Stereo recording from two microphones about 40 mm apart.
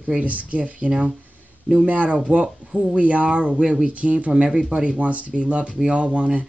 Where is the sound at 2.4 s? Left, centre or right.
Right.